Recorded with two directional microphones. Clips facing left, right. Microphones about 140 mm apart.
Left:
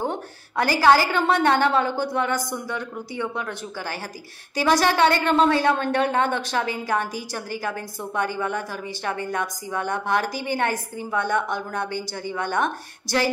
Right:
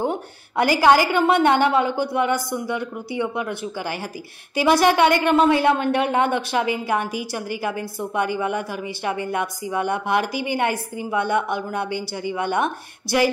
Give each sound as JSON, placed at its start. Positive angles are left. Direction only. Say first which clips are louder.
{"t": 0.0, "sound": "a woman's voice", "louder": "right 3 dB", "side_deg": -15}